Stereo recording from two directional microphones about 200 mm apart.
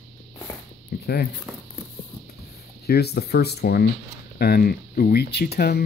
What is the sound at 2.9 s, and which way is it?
Speech, 50° left (ahead or behind).